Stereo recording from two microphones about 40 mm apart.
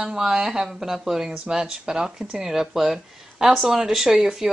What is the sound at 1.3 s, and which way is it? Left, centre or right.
Speech, centre.